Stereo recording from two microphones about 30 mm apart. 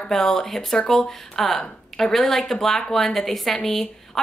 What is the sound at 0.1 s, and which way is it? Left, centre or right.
Speech, centre.